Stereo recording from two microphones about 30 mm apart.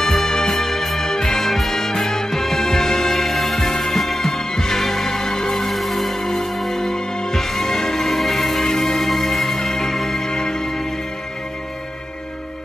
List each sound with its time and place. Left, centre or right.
0.0 s music: centre
10.3 s music: left